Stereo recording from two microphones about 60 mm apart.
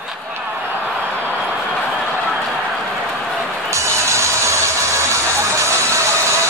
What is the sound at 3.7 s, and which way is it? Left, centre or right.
Music, right.